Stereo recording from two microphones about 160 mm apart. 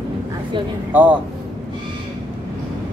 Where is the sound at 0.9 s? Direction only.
10° right (ahead or behind).